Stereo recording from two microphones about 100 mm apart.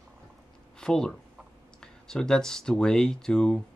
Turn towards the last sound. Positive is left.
turn(degrees=5)  # may be behind; listen again after turning